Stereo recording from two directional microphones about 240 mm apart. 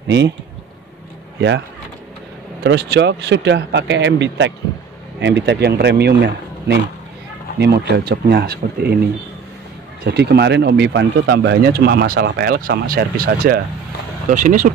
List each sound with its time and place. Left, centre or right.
2.6 s speech: right
10.0 s speech: right